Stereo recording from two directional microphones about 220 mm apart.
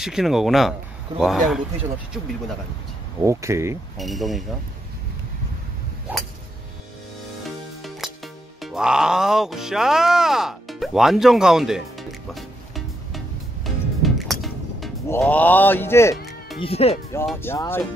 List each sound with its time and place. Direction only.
0.0 s speech: centre (ahead or behind)
3.3 s speech: 15° right (ahead or behind)
4.0 s speech: centre (ahead or behind)
7.4 s music: centre (ahead or behind)
8.5 s speech: centre (ahead or behind)
13.7 s music: centre (ahead or behind)
15.0 s speech: 10° left (ahead or behind)
16.5 s speech: 25° left (ahead or behind)
17.4 s speech: 10° left (ahead or behind)